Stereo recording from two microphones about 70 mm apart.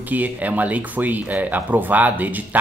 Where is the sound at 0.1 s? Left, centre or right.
Right.